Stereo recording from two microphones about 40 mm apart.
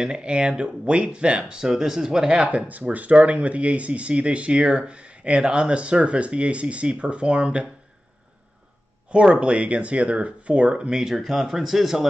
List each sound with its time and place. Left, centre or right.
0.0 s speech: right
2.3 s speech: right
9.1 s speech: right
11.1 s speech: centre